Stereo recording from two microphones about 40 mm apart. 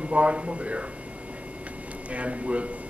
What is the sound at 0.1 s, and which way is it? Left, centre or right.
Speech, right.